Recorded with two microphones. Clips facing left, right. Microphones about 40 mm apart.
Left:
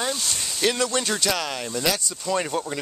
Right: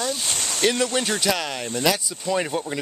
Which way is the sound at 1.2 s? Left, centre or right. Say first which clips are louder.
Right 1 dB; centre.